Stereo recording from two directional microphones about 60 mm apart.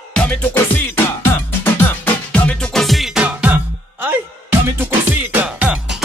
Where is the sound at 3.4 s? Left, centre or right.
Centre.